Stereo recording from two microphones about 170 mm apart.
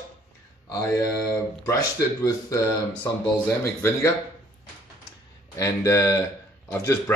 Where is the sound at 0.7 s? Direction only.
20° left (ahead or behind).